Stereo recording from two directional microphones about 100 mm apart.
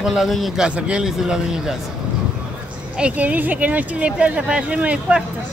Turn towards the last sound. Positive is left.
turn(degrees=-10)  # may be behind; listen again after turning